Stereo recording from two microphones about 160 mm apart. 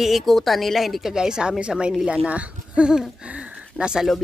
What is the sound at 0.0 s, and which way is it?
A woman's voice, centre (ahead or behind).